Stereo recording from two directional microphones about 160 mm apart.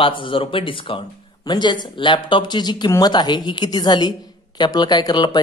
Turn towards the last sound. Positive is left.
turn(degrees=25)  # may be behind; listen again after turning